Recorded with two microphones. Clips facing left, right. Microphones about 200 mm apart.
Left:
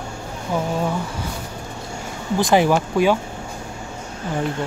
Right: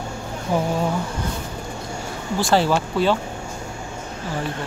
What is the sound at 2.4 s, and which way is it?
Speech, 15° left (ahead or behind).